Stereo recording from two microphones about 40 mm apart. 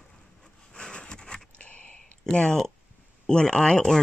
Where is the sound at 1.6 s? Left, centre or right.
Left.